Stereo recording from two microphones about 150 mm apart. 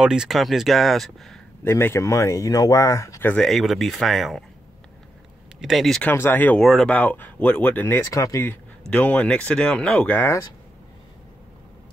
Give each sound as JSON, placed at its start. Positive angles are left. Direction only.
{"t": 0.0, "sound": "speech", "side_deg": -5}
{"t": 1.6, "sound": "speech", "side_deg": 15}
{"t": 3.4, "sound": "speech", "side_deg": 0}
{"t": 5.6, "sound": "speech", "side_deg": 0}
{"t": 6.6, "sound": "speech", "side_deg": 0}
{"t": 8.9, "sound": "speech", "side_deg": 10}